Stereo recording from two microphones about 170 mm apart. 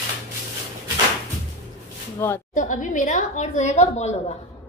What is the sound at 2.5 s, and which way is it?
A woman's voice, 50° left (ahead or behind).